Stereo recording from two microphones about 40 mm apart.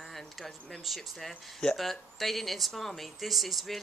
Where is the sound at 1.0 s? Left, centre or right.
Centre.